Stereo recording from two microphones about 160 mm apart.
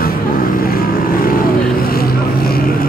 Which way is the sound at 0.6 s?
65° left (ahead or behind).